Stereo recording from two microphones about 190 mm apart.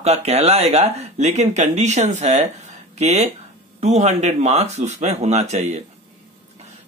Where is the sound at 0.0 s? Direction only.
35° right (ahead or behind).